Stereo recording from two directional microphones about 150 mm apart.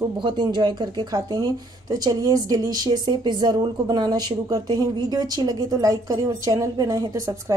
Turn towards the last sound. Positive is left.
turn(degrees=-20)  # may be behind; listen again after turning